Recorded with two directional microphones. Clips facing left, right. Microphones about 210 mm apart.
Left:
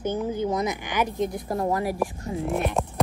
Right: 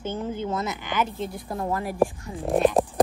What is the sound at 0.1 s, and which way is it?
Speech, 10° left (ahead or behind).